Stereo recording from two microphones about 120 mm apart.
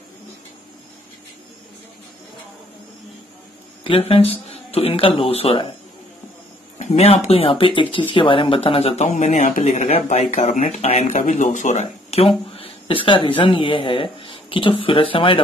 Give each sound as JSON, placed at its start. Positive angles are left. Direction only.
{"t": 4.1, "sound": "speech", "side_deg": 55}
{"t": 6.8, "sound": "speech", "side_deg": 60}